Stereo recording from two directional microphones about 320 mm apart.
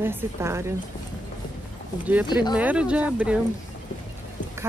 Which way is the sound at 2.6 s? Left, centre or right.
Centre.